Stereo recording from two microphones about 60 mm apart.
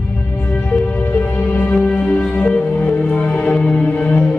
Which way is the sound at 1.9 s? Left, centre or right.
Centre.